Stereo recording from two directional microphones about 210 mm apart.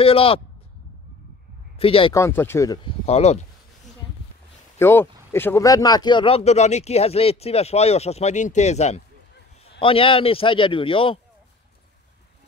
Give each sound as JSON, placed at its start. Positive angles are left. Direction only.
{"t": 0.0, "sound": "speech", "side_deg": 25}
{"t": 1.8, "sound": "speech", "side_deg": 25}
{"t": 2.1, "sound": "speech", "side_deg": 10}
{"t": 3.1, "sound": "speech", "side_deg": 30}
{"t": 4.7, "sound": "speech", "side_deg": 10}